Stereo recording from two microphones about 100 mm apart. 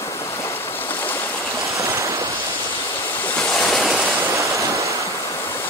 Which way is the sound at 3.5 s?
5° left (ahead or behind).